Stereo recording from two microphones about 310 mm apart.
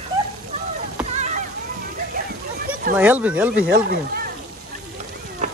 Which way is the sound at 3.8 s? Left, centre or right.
Right.